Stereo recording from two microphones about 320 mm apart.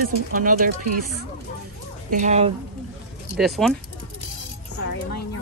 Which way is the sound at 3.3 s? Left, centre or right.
Centre.